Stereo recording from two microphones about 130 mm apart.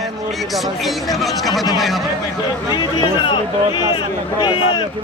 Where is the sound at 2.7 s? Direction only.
35° left (ahead or behind).